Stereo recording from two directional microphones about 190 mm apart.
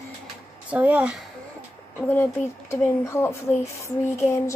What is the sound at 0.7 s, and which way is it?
Speech, 5° right (ahead or behind).